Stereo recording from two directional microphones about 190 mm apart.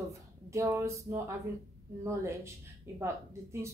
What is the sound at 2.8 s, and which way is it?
Speech, 15° right (ahead or behind).